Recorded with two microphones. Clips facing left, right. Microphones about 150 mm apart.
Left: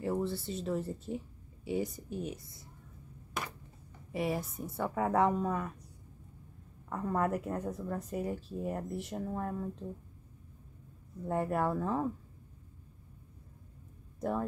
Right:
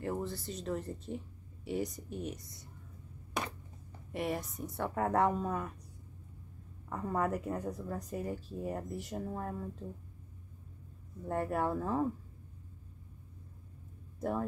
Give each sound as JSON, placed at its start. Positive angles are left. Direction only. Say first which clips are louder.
{"t": 0.0, "sound": "speech", "louder": "left 4 dB", "side_deg": 0}
{"t": 4.1, "sound": "speech", "louder": "left 2 dB", "side_deg": 0}
{"t": 6.9, "sound": "speech", "louder": "left 2 dB", "side_deg": 0}
{"t": 11.2, "sound": "speech", "louder": "left 2 dB", "side_deg": 0}